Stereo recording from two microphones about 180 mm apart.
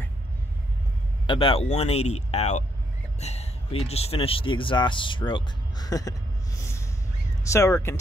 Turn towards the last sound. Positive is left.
turn(degrees=15)  # may be behind; listen again after turning